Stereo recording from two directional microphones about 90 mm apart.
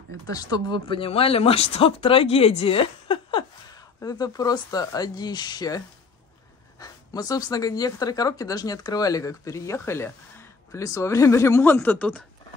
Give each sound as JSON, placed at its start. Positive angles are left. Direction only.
{"t": 0.3, "sound": "speech", "side_deg": 45}
{"t": 3.7, "sound": "speech", "side_deg": 45}